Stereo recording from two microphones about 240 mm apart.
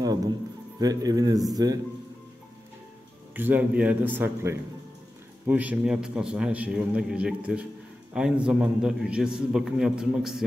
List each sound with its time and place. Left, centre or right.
0.7 s a man's voice: centre
3.3 s a man's voice: centre